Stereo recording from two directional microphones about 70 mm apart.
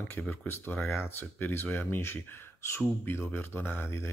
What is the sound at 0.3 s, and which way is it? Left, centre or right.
Speech, left.